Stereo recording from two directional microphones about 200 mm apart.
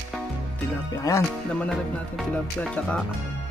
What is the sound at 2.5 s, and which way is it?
Speech, 5° left (ahead or behind).